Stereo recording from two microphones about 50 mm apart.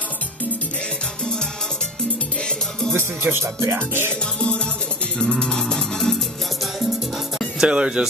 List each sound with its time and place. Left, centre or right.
3.0 s speech: right
4.4 s music: centre
7.6 s speech: right